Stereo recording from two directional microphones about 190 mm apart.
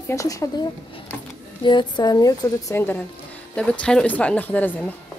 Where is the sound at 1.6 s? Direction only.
25° left (ahead or behind).